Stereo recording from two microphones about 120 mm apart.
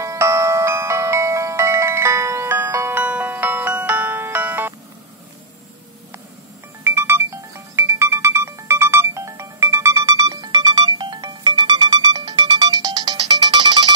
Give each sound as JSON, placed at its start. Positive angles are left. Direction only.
{"t": 0.0, "sound": "music", "side_deg": -25}
{"t": 6.8, "sound": "music", "side_deg": -20}